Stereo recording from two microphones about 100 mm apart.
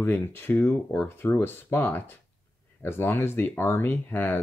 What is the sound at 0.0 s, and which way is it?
Speech, 20° left (ahead or behind).